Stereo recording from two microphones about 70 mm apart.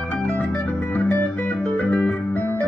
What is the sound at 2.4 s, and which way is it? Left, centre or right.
Organ, left.